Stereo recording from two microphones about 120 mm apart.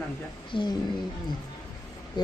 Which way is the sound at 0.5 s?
45° left (ahead or behind).